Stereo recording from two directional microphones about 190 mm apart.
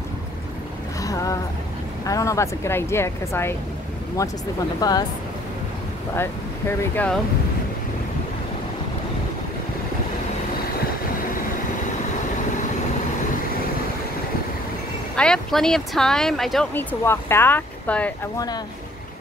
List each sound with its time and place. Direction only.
1.0 s a sound: 15° left (ahead or behind)
2.0 s speech: 15° left (ahead or behind)
6.8 s speech: 10° left (ahead or behind)
15.1 s speech: 5° left (ahead or behind)
17.0 s speech: 10° left (ahead or behind)